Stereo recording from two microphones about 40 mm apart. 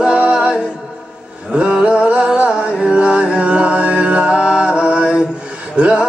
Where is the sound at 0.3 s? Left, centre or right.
Right.